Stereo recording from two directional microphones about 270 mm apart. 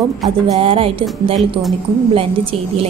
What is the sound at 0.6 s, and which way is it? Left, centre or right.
Speech, right.